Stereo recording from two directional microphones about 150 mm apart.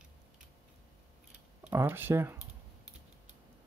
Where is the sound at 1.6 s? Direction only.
10° right (ahead or behind).